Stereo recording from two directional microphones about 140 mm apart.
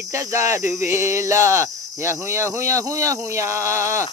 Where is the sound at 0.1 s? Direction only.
20° right (ahead or behind).